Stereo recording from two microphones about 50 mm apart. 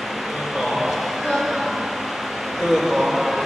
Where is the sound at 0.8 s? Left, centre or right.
Centre.